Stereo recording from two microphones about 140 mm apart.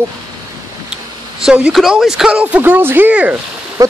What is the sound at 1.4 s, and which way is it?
Speech, 5° right (ahead or behind).